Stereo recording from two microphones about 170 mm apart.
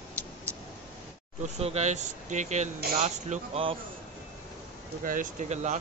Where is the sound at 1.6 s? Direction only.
40° right (ahead or behind).